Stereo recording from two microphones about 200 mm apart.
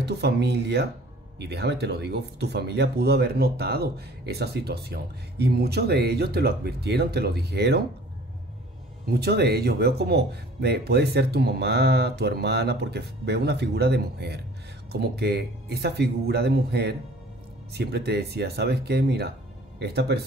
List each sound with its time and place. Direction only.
0.0 s speech: 55° right (ahead or behind)
9.2 s speech: 55° right (ahead or behind)